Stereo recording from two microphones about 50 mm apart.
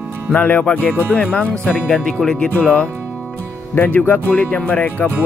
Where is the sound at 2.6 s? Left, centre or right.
Left.